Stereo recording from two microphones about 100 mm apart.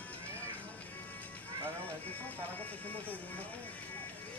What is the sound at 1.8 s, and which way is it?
Speech, 15° left (ahead or behind).